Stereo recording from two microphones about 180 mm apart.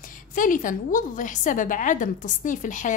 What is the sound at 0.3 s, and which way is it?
Speech, 50° left (ahead or behind).